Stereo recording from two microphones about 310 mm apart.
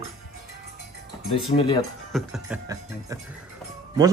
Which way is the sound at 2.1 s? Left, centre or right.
Centre.